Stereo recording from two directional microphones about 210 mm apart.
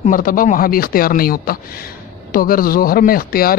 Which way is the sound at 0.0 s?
40° left (ahead or behind).